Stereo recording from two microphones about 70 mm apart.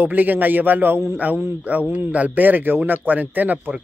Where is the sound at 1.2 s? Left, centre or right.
Right.